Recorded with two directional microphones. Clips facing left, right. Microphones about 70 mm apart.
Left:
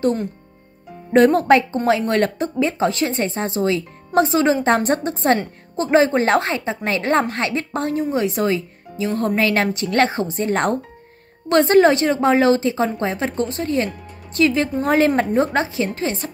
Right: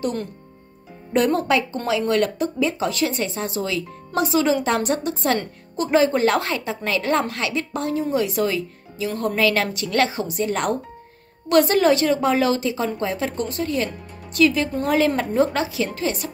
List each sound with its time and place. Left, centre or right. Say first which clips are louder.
1.1 s a woman's voice: left 6 dB; left